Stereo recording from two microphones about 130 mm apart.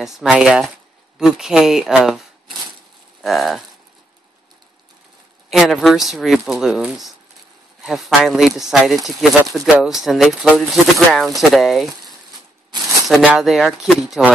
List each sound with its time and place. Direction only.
0.0 s speech: 5° right (ahead or behind)
5.5 s speech: centre (ahead or behind)
12.1 s a sound: 30° right (ahead or behind)
13.3 s speech: centre (ahead or behind)